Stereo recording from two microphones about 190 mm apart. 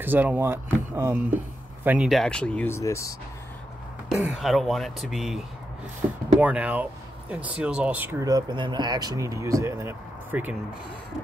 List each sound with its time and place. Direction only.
0.0 s speech: 10° right (ahead or behind); by 3.2 s 15° left (ahead or behind)
4.1 s speech: centre (ahead or behind)
6.4 s speech: 10° right (ahead or behind)